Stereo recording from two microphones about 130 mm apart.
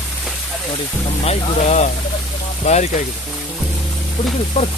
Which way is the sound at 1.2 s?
55° left (ahead or behind).